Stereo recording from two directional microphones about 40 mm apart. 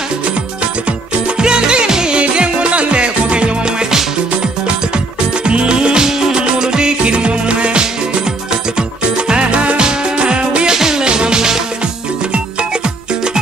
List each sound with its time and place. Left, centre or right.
1.4 s music: right
10.8 s music: centre